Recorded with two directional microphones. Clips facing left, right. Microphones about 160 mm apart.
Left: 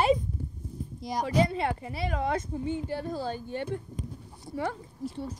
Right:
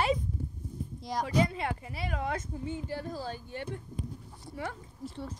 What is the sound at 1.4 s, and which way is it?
Speech, 30° left (ahead or behind).